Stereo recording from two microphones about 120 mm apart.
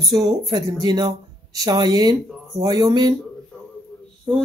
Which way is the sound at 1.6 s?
35° right (ahead or behind).